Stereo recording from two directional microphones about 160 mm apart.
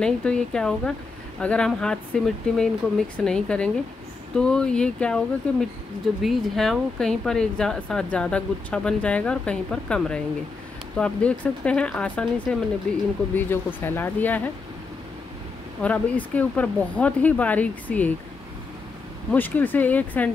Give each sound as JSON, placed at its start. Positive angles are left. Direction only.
{"t": 0.0, "sound": "speech", "side_deg": 5}
{"t": 15.8, "sound": "speech", "side_deg": 10}
{"t": 19.3, "sound": "speech", "side_deg": 10}